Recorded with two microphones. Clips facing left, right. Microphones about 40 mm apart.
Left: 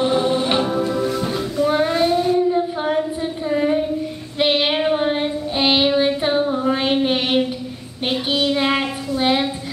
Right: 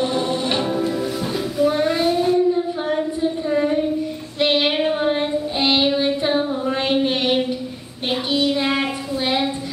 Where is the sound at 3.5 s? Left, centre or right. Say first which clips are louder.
Left 2 dB; centre.